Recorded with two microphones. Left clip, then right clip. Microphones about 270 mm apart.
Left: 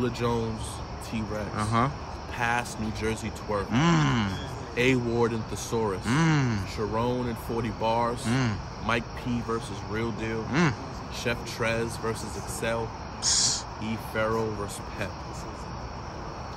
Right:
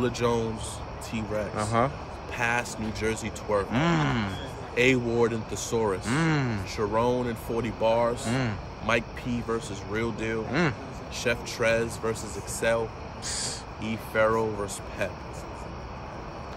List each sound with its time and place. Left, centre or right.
0.0 s speech: centre